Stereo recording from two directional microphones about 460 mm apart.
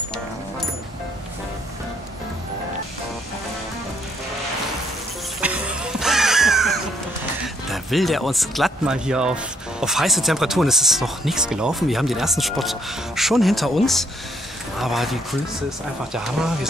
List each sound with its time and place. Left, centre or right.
5.4 s music: centre
7.4 s speech: centre